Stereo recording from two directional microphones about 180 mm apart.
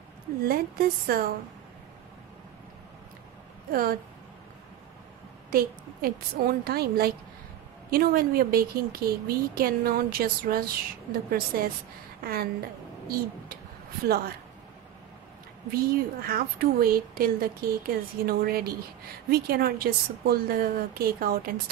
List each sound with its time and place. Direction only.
0.4 s speech: 55° right (ahead or behind)
3.7 s speech: 55° right (ahead or behind)
5.5 s speech: 55° right (ahead or behind)
14.0 s speech: 60° right (ahead or behind)
15.7 s speech: 55° right (ahead or behind)